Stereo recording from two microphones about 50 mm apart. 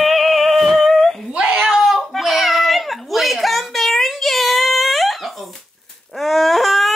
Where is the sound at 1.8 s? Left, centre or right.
Centre.